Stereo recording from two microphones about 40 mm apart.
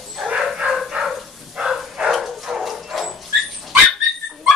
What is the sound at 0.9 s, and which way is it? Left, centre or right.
Dog, centre.